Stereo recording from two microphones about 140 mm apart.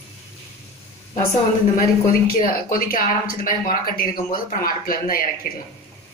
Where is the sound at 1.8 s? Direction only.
90° left.